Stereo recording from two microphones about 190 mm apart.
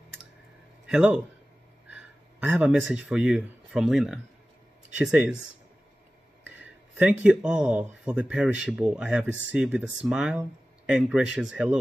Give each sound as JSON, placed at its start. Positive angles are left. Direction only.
{"t": 0.8, "sound": "a man's voice", "side_deg": -5}
{"t": 2.4, "sound": "speech", "side_deg": -5}
{"t": 6.4, "sound": "speech", "side_deg": -5}